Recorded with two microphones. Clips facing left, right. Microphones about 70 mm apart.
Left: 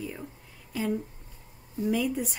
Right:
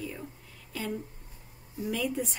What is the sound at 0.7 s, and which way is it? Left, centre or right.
Speech, centre.